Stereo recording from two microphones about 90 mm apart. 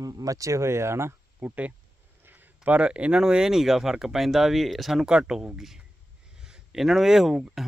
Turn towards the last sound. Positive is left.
turn(degrees=-5)  # may be behind; listen again after turning